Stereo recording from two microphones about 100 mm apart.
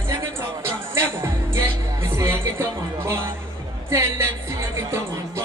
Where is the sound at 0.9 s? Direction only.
30° right (ahead or behind).